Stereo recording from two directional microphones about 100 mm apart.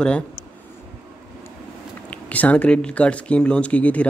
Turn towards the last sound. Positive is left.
turn(degrees=15)  # may be behind; listen again after turning